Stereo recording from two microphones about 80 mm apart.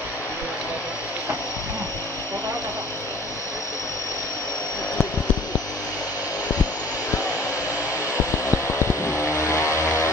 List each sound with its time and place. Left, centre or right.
8.5 s vehicle: left